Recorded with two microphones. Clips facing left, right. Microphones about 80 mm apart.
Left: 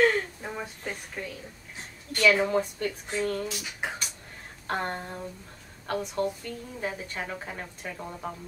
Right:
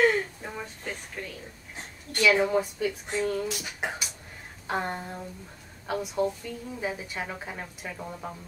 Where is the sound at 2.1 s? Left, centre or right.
Centre.